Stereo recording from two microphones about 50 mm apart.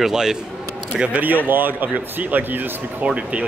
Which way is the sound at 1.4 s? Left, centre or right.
Right.